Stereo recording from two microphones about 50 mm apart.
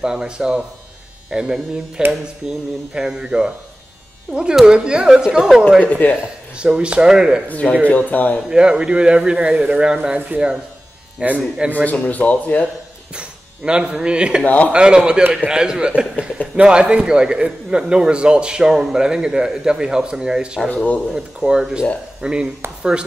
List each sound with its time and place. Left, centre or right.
0.0 s a man's voice: centre
5.9 s speech: left
6.8 s a man's voice: centre
7.9 s speech: left
8.5 s a man's voice: centre
10.3 s speech: right
11.1 s a man's voice: right
12.1 s speech: left
13.1 s speech: centre
14.4 s speech: left
14.7 s a man's voice: centre
20.7 s speech: left
21.5 s a man's voice: centre